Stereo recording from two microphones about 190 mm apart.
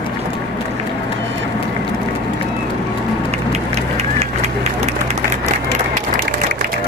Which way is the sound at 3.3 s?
35° right (ahead or behind).